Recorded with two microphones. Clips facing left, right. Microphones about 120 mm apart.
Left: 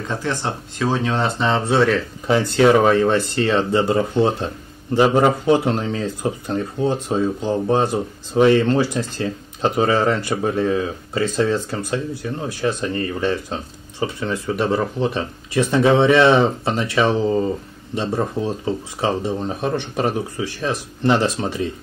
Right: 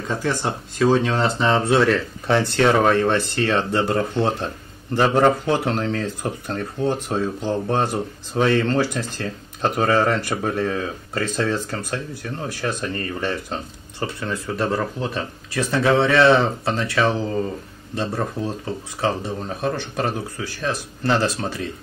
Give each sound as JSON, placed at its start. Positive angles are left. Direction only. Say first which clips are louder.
{"t": 0.1, "sound": "speech", "louder": "right 1 dB", "side_deg": 0}